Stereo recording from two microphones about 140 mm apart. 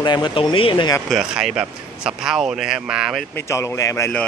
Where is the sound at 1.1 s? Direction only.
Centre (ahead or behind).